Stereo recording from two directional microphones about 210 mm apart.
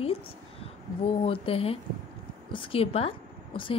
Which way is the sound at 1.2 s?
25° left (ahead or behind).